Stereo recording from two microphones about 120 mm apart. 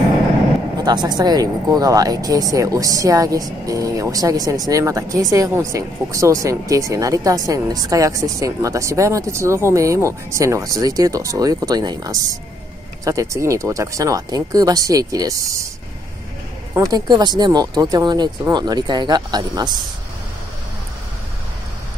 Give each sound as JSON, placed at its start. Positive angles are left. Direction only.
{"t": 0.8, "sound": "speech", "side_deg": -35}
{"t": 16.7, "sound": "speech", "side_deg": -35}